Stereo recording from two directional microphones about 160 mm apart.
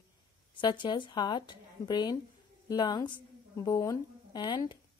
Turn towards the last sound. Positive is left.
turn(degrees=25)  # may be behind; listen again after turning